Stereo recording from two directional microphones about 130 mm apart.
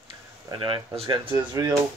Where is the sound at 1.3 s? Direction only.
25° right (ahead or behind).